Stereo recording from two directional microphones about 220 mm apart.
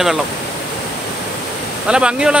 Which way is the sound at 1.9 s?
5° right (ahead or behind).